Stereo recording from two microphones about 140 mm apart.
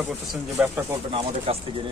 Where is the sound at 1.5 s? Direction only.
45° right (ahead or behind).